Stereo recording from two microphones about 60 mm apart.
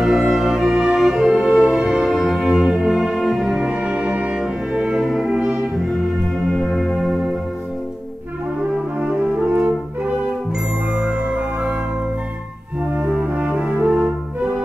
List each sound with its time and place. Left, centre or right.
0.0 s music: centre
5.0 s music: centre
6.5 s music: centre
9.0 s brass instrument: centre
11.0 s music: centre
13.0 s french horn: centre